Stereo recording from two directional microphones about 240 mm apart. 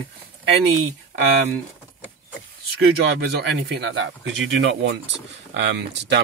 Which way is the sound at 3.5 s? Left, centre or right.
Right.